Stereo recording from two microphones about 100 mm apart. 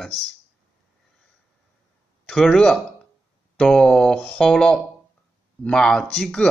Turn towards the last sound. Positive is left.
turn(degrees=5)  # may be behind; listen again after turning